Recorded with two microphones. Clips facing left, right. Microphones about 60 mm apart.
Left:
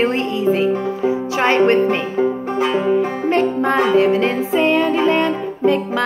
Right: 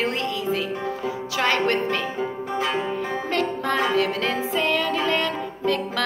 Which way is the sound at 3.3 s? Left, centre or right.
Left.